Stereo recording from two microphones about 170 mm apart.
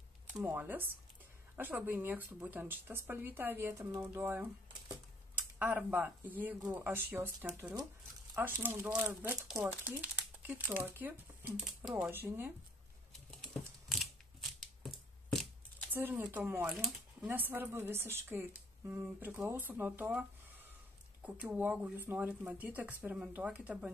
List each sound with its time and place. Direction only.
0.3 s speech: 10° right (ahead or behind)
5.6 s speech: 10° right (ahead or behind)
13.3 s a sound: centre (ahead or behind)
15.9 s speech: 10° right (ahead or behind)